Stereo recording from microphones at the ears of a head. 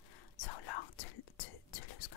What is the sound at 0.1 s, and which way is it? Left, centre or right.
Whispering, left.